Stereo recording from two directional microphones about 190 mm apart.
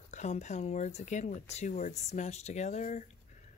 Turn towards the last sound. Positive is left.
turn(degrees=40)  # may be behind; listen again after turning